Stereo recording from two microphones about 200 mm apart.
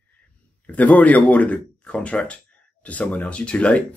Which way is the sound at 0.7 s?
10° left (ahead or behind).